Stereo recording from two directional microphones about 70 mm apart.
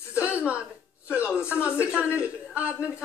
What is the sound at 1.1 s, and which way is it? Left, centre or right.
Speech, centre.